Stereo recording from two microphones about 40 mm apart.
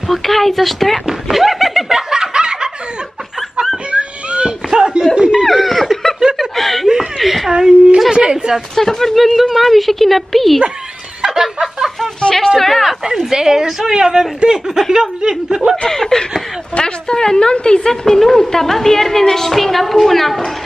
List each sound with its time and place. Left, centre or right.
0.1 s a woman's voice: centre
1.0 s laughter: centre
2.0 s snicker: centre
3.9 s a sound: right
4.6 s chuckle: centre
5.1 s snicker: right
5.4 s snicker: centre
7.2 s chuckle: centre
8.1 s a woman's voice: centre
8.7 s a woman's voice: centre
11.2 s snicker: centre
12.4 s a woman's voice: centre
12.8 s a woman's voice: centre
15.9 s a woman's voice: centre